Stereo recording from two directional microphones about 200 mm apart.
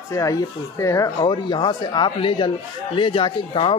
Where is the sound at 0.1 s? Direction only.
15° left (ahead or behind).